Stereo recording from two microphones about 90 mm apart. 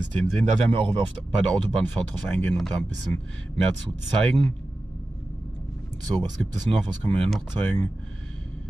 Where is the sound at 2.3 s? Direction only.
15° left (ahead or behind).